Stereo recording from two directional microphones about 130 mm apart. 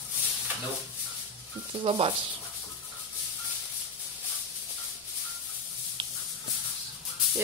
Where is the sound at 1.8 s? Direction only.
45° right (ahead or behind).